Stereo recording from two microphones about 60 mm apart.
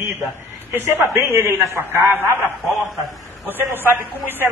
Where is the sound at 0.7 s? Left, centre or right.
Right.